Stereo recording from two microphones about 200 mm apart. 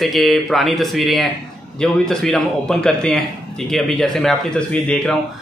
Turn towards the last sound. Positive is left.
turn(degrees=5)  # may be behind; listen again after turning